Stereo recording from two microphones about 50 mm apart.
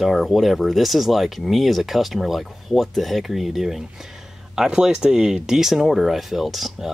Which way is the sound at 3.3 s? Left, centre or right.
Centre.